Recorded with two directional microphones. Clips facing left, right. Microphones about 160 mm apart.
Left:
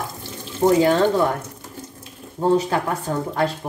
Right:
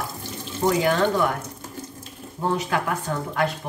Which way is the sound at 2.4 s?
30° left (ahead or behind).